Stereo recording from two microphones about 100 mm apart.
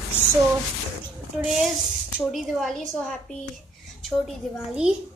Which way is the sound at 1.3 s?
5° right (ahead or behind).